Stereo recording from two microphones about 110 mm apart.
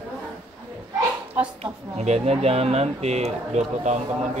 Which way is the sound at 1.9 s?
85° right.